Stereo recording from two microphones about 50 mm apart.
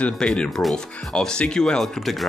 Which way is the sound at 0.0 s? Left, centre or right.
Left.